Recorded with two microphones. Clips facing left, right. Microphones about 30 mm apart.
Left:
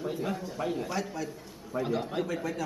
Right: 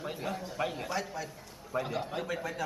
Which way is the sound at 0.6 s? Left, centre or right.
Centre.